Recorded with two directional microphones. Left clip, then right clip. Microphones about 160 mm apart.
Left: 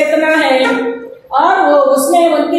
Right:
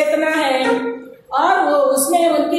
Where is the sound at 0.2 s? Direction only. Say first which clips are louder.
Left 6 dB; centre (ahead or behind).